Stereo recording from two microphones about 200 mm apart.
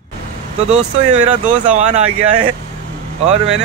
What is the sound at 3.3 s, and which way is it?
Speech, 30° right (ahead or behind).